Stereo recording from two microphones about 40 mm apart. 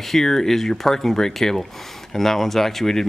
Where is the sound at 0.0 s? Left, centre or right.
Centre.